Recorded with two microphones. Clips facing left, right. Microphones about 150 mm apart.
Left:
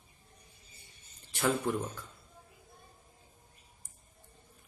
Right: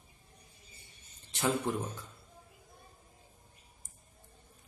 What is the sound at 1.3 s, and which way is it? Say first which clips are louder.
Speech: left 1 dB; 20° right (ahead or behind).